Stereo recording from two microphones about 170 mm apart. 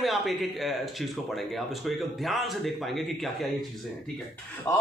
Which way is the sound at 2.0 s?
Centre (ahead or behind).